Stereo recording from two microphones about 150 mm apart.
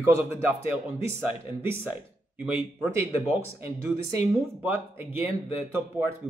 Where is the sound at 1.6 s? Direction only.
15° right (ahead or behind).